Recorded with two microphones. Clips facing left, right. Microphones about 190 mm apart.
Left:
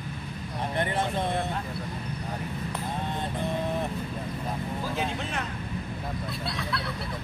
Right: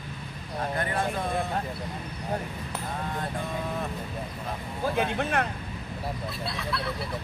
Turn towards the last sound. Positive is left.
turn(degrees=0)  # may be behind; listen again after turning